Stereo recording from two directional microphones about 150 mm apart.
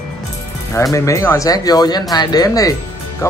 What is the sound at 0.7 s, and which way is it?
Speech, 20° left (ahead or behind).